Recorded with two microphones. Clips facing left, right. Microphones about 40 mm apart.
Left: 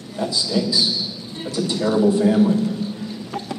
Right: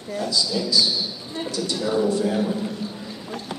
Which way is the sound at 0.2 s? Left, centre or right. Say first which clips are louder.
Left 4 dB; left.